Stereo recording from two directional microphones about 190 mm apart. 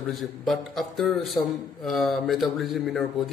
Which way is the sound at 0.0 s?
Centre (ahead or behind).